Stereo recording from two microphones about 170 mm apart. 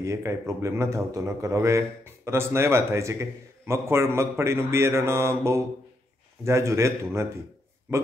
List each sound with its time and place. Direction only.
0.0 s a man's voice: 15° right (ahead or behind)